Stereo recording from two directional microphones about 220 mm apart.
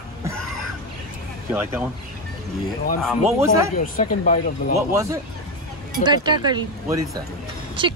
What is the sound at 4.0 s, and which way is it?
Speech, 35° left (ahead or behind).